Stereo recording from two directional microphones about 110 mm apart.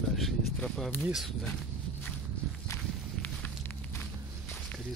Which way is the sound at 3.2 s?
15° left (ahead or behind).